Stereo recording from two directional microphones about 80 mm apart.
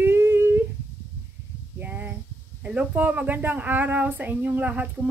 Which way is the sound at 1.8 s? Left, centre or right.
Right.